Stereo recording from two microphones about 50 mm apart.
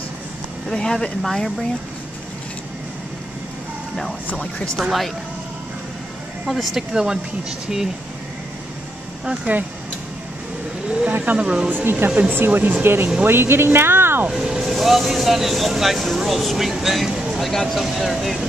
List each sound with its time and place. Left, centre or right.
0.7 s speech: centre
4.3 s speech: left
4.7 s speech: centre
6.4 s speech: centre
6.9 s speech: centre
9.4 s speech: right
10.9 s a woman's voice: right
11.7 s speech: right
14.3 s speech: centre
17.4 s speech: centre